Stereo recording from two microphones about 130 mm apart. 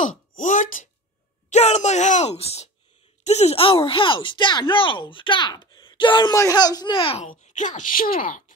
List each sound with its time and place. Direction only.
0.0 s speech: 85° left
1.5 s speech: 60° left (ahead or behind); by 7.2 s 40° left (ahead or behind)
7.2 s speech: 70° left (ahead or behind); by 8.5 s 90° left